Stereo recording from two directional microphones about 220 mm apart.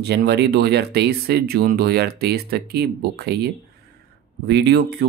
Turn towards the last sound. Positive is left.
turn(degrees=-50)  # may be behind; listen again after turning